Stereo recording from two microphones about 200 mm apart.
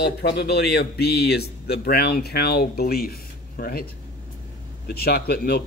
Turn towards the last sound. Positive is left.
turn(degrees=50)  # may be behind; listen again after turning